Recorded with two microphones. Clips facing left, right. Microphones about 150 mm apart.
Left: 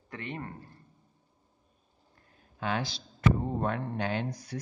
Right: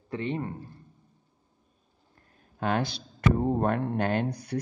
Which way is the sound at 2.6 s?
55° right (ahead or behind).